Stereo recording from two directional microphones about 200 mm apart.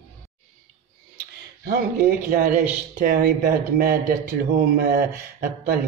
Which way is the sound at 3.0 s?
45° right (ahead or behind).